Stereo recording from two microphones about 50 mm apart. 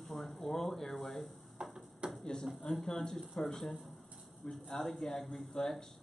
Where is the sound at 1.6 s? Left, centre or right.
Centre.